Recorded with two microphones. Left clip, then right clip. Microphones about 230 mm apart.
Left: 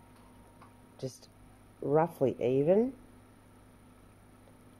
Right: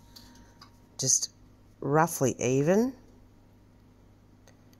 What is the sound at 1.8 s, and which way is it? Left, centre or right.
Speech, right.